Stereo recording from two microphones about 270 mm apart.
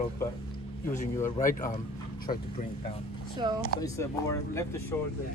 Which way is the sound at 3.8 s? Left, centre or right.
Centre.